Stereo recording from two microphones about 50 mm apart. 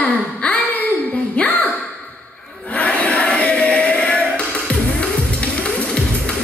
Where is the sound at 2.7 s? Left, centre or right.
Left.